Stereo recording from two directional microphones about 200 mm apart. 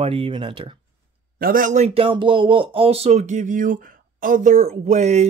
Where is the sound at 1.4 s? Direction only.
45° right (ahead or behind).